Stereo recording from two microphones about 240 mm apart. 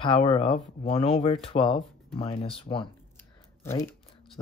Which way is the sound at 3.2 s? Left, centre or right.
Centre.